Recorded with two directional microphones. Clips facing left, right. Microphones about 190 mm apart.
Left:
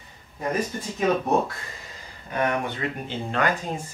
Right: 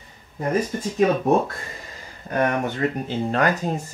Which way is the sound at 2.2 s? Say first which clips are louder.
Right 3 dB; 45° right (ahead or behind).